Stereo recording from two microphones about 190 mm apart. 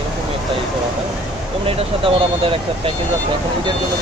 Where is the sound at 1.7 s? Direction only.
30° right (ahead or behind).